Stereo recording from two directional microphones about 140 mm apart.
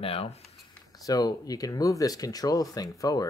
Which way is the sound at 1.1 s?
25° left (ahead or behind).